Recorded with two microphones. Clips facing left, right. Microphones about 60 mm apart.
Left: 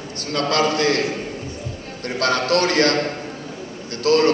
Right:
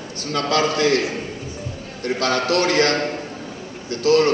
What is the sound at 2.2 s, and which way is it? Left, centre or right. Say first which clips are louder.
Speech: left 1 dB; left.